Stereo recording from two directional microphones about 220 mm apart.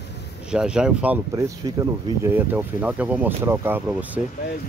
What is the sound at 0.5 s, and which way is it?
Speech, 5° right (ahead or behind).